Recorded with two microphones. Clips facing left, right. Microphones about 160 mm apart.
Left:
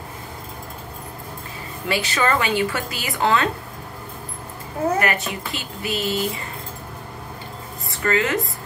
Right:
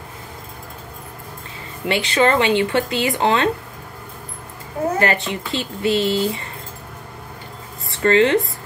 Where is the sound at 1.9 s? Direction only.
25° right (ahead or behind).